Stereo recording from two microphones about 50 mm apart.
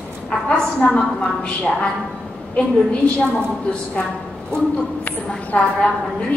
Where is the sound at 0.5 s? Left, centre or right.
Centre.